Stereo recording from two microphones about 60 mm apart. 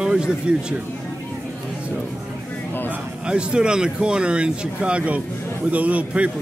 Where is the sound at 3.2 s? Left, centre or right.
Centre.